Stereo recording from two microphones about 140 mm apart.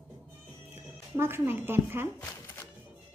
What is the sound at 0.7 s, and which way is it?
Speech, 15° right (ahead or behind).